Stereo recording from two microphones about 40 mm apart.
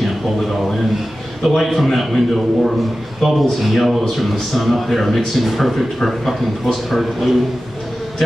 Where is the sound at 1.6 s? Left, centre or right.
Centre.